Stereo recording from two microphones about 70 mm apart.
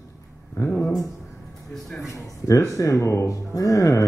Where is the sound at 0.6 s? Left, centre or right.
Left.